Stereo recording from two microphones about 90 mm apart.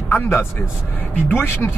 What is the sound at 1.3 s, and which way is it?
Speech, 20° left (ahead or behind).